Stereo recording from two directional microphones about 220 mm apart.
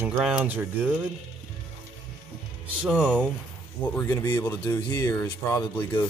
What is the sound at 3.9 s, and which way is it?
Speech, 10° left (ahead or behind).